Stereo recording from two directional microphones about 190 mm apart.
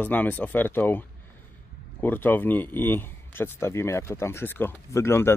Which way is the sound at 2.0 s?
10° left (ahead or behind).